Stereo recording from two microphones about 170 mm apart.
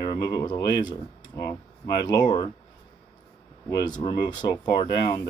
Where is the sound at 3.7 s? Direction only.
25° left (ahead or behind).